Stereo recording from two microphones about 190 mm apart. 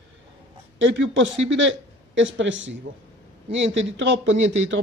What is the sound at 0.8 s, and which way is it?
Speech, 75° right (ahead or behind).